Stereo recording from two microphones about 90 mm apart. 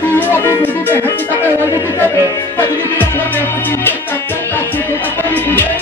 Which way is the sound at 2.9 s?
20° left (ahead or behind).